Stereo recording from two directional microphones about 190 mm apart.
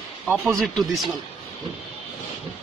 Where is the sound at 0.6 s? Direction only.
Centre (ahead or behind).